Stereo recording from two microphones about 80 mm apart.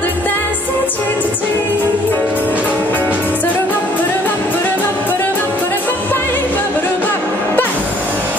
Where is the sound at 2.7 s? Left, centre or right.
Left.